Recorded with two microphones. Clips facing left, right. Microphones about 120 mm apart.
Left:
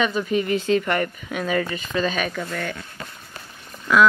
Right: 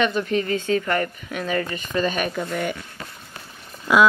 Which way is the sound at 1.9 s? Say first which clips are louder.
Right 2 dB; 15° right (ahead or behind).